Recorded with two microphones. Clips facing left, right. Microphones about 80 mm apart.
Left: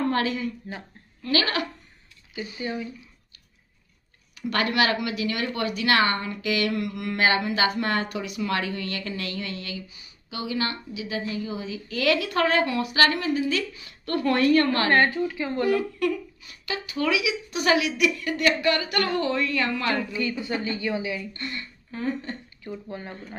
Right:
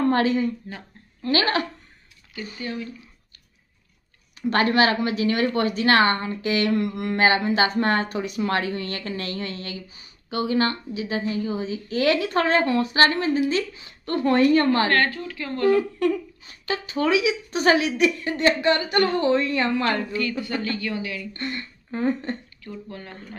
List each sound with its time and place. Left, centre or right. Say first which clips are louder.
0.1 s speech: right 5 dB; right
2.6 s speech: left 1 dB; centre
4.4 s a woman's voice: right 4 dB; right
14.9 s a woman's voice: left 2 dB; centre
15.7 s speech: right 4 dB; right
19.9 s a woman's voice: right 2 dB; centre
21.3 s speech: right 4 dB; right
22.6 s a woman's voice: left 1 dB; centre